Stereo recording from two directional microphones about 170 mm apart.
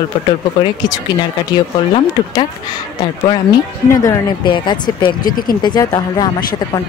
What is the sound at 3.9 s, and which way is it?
Speech, 20° left (ahead or behind).